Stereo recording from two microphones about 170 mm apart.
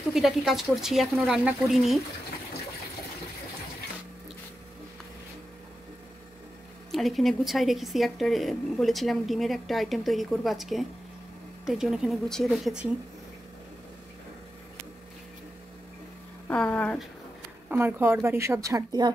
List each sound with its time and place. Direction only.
0.1 s speech: centre (ahead or behind)
6.9 s speech: centre (ahead or behind)
16.4 s speech: 10° left (ahead or behind)
17.6 s speech: 10° right (ahead or behind)